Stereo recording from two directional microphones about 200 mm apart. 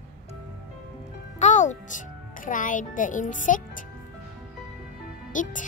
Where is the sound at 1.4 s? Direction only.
35° left (ahead or behind).